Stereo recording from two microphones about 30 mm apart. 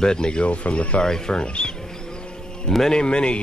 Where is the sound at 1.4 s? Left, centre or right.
Left.